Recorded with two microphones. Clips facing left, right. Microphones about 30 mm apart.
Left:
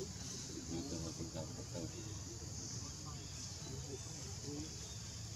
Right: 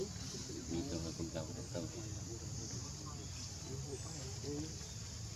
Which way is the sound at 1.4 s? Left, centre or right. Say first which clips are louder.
Right 2 dB; right.